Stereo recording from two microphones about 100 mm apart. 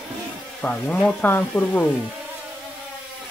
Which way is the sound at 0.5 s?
10° left (ahead or behind).